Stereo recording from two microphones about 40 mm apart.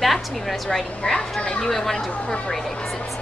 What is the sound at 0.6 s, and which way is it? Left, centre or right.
Speech, centre.